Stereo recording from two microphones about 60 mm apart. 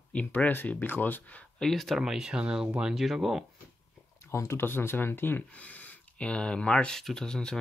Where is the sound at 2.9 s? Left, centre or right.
Centre.